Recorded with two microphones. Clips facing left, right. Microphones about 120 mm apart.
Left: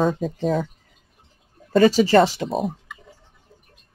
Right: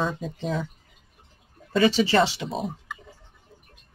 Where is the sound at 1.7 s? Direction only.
40° left (ahead or behind).